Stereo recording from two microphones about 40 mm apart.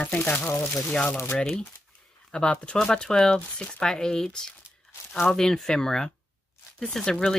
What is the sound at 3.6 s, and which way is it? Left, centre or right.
Speech, left.